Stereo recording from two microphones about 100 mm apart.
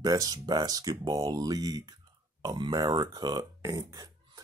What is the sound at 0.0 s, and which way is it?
Speech, 40° right (ahead or behind).